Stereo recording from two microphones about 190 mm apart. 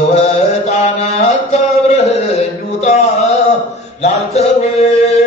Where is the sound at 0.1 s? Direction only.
35° left (ahead or behind).